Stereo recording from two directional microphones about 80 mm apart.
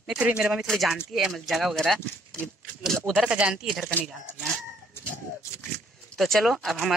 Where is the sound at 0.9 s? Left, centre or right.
Centre.